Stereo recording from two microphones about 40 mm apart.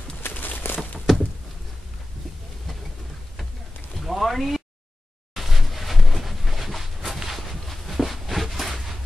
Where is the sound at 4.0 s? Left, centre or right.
Centre.